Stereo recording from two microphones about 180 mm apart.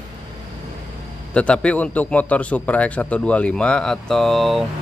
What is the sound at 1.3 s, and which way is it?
Speech, 5° left (ahead or behind).